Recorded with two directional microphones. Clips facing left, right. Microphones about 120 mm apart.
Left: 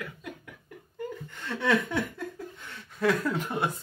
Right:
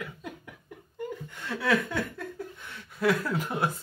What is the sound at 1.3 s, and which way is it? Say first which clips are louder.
Chuckle: left 1 dB; 10° right (ahead or behind).